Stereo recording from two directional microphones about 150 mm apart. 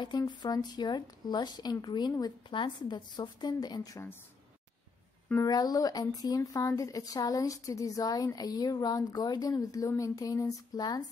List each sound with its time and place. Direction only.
0.0 s speech: 30° left (ahead or behind)
5.3 s speech: 25° left (ahead or behind)